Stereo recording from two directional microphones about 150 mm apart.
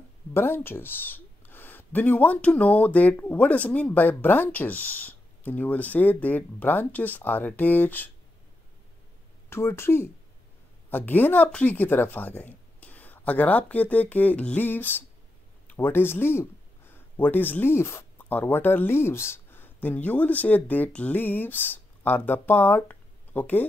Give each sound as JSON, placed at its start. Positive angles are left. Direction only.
{"t": 0.3, "sound": "speech", "side_deg": 15}
{"t": 9.5, "sound": "speech", "side_deg": 15}